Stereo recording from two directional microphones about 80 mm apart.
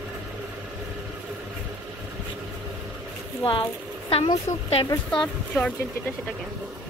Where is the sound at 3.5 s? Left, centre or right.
Left.